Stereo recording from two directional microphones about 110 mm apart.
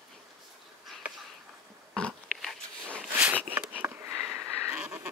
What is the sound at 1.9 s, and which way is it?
Dog, 10° left (ahead or behind).